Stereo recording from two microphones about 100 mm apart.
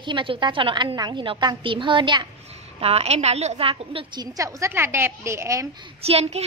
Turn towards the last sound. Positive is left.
turn(degrees=-90)